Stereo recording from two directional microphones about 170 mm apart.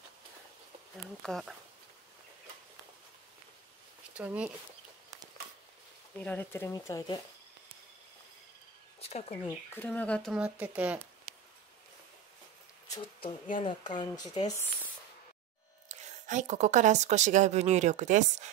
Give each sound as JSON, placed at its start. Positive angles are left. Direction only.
{"t": 1.2, "sound": "speech", "side_deg": 0}
{"t": 4.1, "sound": "speech", "side_deg": -10}
{"t": 6.1, "sound": "speech", "side_deg": 10}
{"t": 9.1, "sound": "speech", "side_deg": 35}
{"t": 9.8, "sound": "speech", "side_deg": 10}
{"t": 10.3, "sound": "speech", "side_deg": -5}
{"t": 13.6, "sound": "speech", "side_deg": 25}
{"t": 15.9, "sound": "speech", "side_deg": -45}